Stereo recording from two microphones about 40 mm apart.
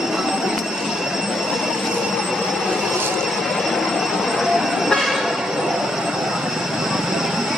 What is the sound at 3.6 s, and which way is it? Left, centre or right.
Train, centre.